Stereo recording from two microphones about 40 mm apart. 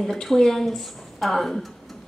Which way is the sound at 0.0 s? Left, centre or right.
Centre.